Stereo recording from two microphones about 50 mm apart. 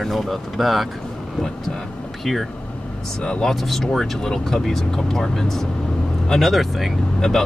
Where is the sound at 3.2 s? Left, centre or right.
Centre.